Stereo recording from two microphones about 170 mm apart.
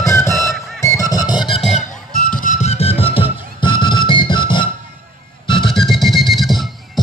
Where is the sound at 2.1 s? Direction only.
55° left (ahead or behind); by 5.8 s 30° left (ahead or behind).